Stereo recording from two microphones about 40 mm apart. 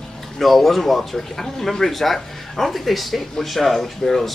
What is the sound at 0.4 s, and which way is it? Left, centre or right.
Speech, centre.